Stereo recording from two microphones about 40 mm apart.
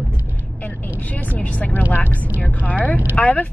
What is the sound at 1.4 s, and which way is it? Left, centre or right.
Speech, left.